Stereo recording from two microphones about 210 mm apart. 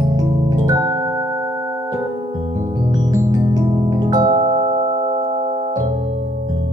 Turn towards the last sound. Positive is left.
turn(degrees=-25)  # may be behind; listen again after turning